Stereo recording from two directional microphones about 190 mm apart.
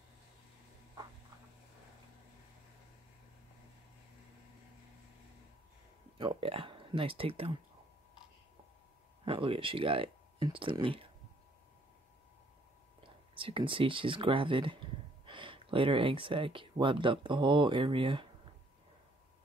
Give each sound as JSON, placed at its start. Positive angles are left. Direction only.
{"t": 6.1, "sound": "speech", "side_deg": -30}
{"t": 9.2, "sound": "speech", "side_deg": -30}
{"t": 13.0, "sound": "speech", "side_deg": -30}